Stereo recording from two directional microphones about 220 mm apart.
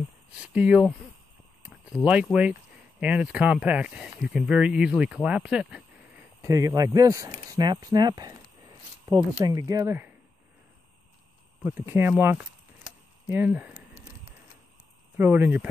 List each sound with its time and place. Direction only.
0.4 s speech: 5° right (ahead or behind)
2.0 s speech: 5° left (ahead or behind)
3.0 s speech: 5° right (ahead or behind)
6.4 s speech: 15° right (ahead or behind)
11.6 s speech: 10° right (ahead or behind)
15.1 s speech: 10° right (ahead or behind)